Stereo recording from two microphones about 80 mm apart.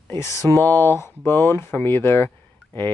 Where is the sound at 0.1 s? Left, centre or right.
Left.